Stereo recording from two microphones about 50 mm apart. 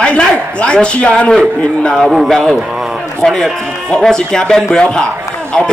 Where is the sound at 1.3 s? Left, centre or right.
Centre.